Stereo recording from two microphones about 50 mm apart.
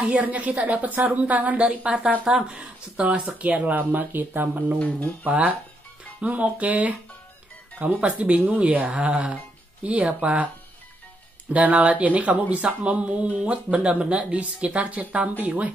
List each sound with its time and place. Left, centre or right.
0.0 s speech: right
3.3 s speech: right
4.7 s speech: left
6.2 s speech: right
10.2 s speech: right
11.5 s speech: right